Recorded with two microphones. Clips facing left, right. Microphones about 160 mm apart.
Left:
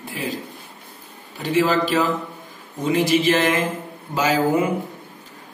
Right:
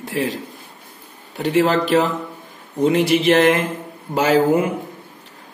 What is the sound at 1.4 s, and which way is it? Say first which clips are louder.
A man's voice: right 2 dB; 65° right (ahead or behind).